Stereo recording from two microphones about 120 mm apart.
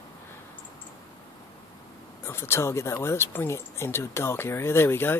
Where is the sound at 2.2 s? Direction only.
20° left (ahead or behind).